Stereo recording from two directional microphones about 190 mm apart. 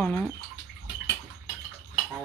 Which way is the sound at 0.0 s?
10° left (ahead or behind).